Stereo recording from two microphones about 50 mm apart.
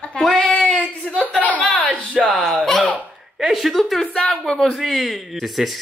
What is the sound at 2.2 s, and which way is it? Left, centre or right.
Speech, centre.